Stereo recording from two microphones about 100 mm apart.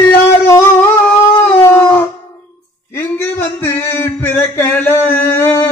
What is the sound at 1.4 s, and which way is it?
Dog, 25° left (ahead or behind).